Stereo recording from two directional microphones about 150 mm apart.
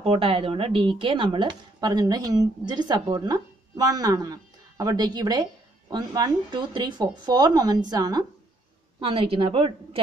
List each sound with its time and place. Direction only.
0.0 s speech: 40° right (ahead or behind)
9.0 s a woman's voice: 35° right (ahead or behind)